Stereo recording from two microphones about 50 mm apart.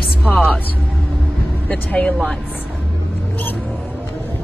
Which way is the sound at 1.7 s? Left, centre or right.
Left.